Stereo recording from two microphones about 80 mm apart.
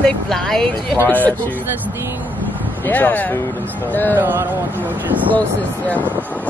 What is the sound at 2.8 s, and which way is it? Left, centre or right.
Speech, left.